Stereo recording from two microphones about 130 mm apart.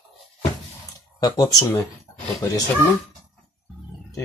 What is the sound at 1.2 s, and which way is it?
Speech, 30° left (ahead or behind).